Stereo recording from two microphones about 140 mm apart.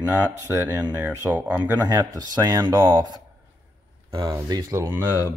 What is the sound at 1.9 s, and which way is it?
Speech, 30° right (ahead or behind).